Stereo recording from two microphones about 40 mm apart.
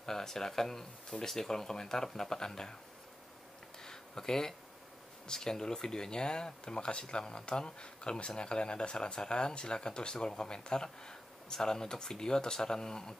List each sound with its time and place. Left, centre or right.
0.0 s speech: centre
3.8 s a sound: centre
5.2 s speech: centre